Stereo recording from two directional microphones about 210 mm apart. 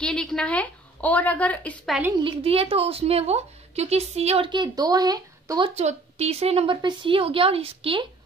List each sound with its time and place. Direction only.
0.0 s a woman's voice: 5° left (ahead or behind)
2.1 s a woman's voice: 25° right (ahead or behind)
5.8 s a woman's voice: 30° right (ahead or behind)